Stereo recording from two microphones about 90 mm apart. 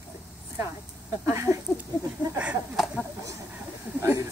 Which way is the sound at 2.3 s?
15° right (ahead or behind).